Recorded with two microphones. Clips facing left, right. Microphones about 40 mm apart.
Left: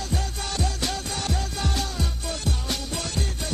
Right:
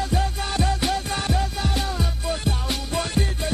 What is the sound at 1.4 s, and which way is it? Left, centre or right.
Music, centre.